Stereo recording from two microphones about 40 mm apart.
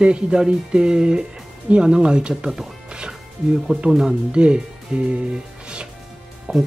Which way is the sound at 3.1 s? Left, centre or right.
Centre.